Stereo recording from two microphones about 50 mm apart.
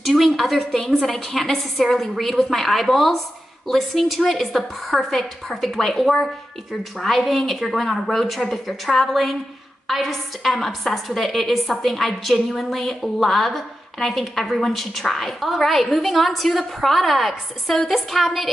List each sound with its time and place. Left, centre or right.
0.0 s a woman's voice: centre